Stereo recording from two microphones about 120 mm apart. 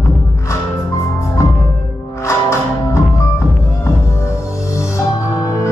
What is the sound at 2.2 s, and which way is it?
Music, 25° left (ahead or behind).